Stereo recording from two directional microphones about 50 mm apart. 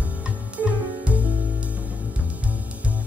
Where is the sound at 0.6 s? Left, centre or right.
Right.